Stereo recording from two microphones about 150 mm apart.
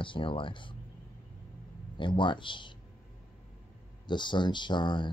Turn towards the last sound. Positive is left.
turn(degrees=30)  # may be behind; listen again after turning